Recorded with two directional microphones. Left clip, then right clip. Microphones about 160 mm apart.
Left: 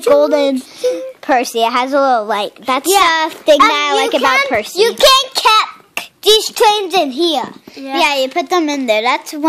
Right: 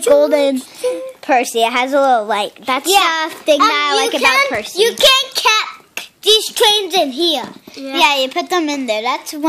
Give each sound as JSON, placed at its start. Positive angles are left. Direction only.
{"t": 0.1, "sound": "speech", "side_deg": 10}
{"t": 4.2, "sound": "a child's voice", "side_deg": 35}
{"t": 4.7, "sound": "a child's voice", "side_deg": 50}
{"t": 8.0, "sound": "speech", "side_deg": 15}